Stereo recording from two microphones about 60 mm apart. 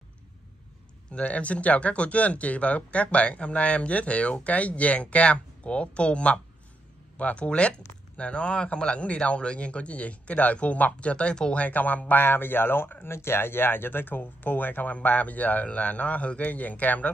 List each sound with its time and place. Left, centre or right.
1.1 s speech: left
11.6 s speech: left